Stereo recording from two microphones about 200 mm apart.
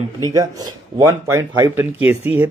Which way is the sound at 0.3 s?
15° right (ahead or behind).